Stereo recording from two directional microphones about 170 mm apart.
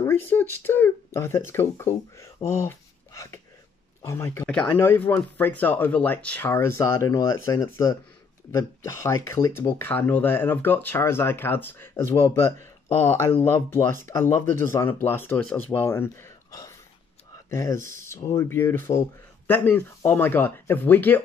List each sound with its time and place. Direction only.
0.0 s speech: 15° left (ahead or behind)
17.7 s speech: 50° right (ahead or behind)
18.0 s speech: 15° left (ahead or behind)